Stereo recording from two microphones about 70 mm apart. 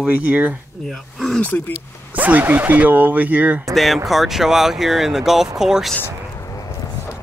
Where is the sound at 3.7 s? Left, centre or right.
Centre.